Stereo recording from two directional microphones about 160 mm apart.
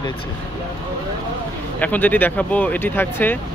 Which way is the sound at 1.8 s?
10° left (ahead or behind).